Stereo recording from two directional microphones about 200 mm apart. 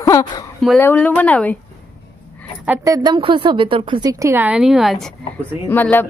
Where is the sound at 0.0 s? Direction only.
15° left (ahead or behind).